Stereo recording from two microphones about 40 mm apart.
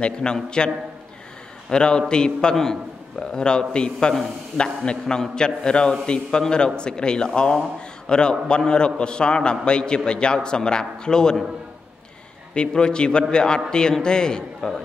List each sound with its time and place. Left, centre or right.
0.0 s a man's voice: left
1.7 s a man's voice: left
12.5 s a man's voice: left